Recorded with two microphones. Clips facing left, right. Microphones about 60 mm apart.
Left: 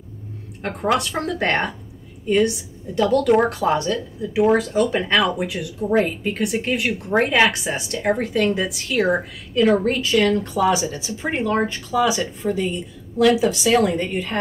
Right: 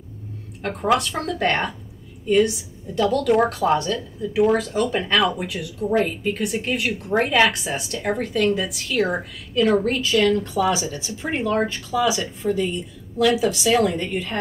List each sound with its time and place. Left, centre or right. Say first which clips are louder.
0.6 s a woman's voice: even; centre
13.7 s a woman's voice: left 1 dB; centre